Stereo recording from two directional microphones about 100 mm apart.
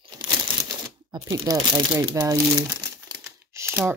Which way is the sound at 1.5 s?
35° right (ahead or behind).